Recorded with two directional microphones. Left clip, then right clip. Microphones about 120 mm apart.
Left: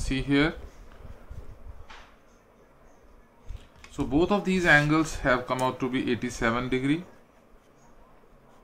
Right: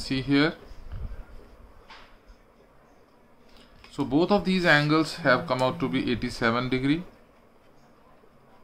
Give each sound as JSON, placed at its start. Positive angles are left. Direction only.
{"t": 0.0, "sound": "speech", "side_deg": -20}
{"t": 3.9, "sound": "speech", "side_deg": -30}